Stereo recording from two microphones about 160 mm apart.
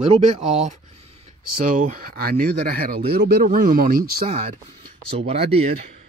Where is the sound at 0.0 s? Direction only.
40° right (ahead or behind).